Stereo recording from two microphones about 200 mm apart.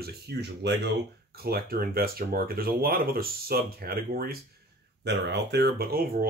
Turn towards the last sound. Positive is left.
turn(degrees=-50)  # may be behind; listen again after turning